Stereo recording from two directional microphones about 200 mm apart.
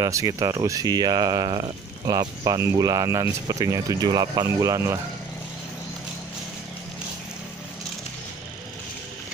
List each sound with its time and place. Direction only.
0.0 s speech: 15° right (ahead or behind)